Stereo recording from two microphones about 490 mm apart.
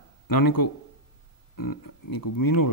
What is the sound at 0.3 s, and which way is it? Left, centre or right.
Speech, left.